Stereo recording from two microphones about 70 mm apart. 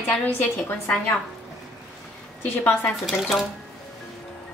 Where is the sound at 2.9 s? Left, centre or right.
Centre.